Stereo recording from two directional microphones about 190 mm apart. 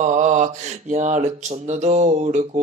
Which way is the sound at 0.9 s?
40° right (ahead or behind).